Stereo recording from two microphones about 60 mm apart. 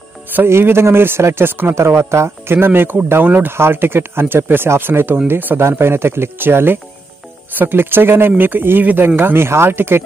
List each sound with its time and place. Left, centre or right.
0.5 s speech: right
5.6 s speech: right